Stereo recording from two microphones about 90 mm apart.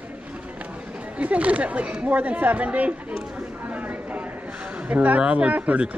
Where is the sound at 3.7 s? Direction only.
15° right (ahead or behind).